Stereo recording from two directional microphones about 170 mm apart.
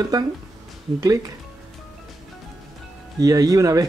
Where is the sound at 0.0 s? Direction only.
20° right (ahead or behind).